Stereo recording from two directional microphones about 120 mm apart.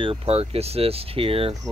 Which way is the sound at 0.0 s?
50° right (ahead or behind).